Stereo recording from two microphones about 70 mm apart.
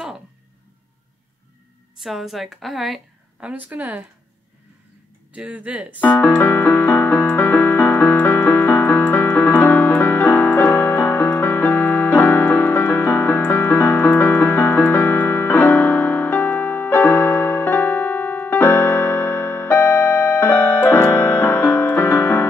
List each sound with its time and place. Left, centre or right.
2.0 s a woman's voice: centre
3.3 s speech: centre
5.3 s speech: centre
5.9 s music: left